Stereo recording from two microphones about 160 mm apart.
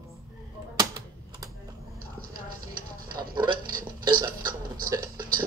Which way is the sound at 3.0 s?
65° right (ahead or behind).